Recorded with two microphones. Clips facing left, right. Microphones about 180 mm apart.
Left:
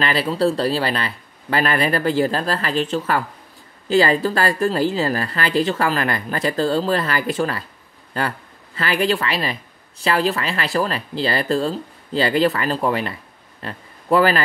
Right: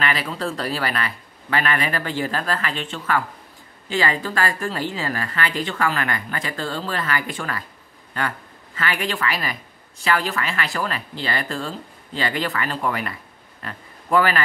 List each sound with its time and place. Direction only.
0.0 s a woman's voice: 30° left (ahead or behind)
8.7 s a woman's voice: 35° left (ahead or behind)
13.6 s a sound: 30° left (ahead or behind)